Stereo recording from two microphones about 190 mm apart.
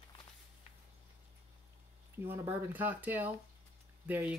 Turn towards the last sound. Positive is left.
turn(degrees=-10)  # may be behind; listen again after turning